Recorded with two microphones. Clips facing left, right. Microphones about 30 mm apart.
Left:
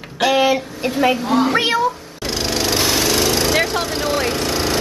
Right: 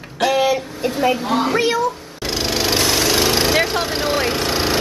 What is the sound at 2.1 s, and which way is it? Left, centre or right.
Jackhammer, centre.